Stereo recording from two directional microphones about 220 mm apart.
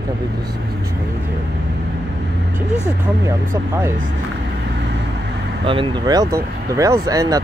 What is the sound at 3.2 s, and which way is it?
Speech, 10° right (ahead or behind).